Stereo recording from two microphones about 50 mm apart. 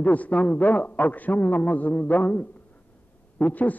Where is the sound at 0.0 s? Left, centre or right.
Left.